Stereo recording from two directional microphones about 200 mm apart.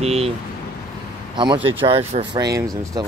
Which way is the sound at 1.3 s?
25° right (ahead or behind).